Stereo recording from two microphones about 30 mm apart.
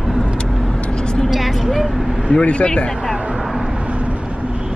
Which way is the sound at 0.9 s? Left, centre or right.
Left.